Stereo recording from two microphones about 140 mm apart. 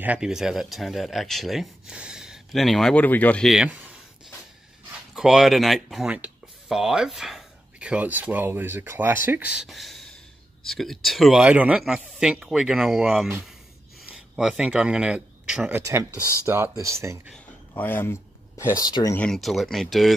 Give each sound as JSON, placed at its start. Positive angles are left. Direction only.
{"t": 0.0, "sound": "speech", "side_deg": -5}
{"t": 3.4, "sound": "speech", "side_deg": -5}
{"t": 5.1, "sound": "speech", "side_deg": -5}
{"t": 15.8, "sound": "speech", "side_deg": -20}
{"t": 17.7, "sound": "speech", "side_deg": 15}
{"t": 19.1, "sound": "speech", "side_deg": 5}